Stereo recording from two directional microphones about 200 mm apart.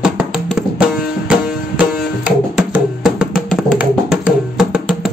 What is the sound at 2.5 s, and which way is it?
Music, 5° right (ahead or behind).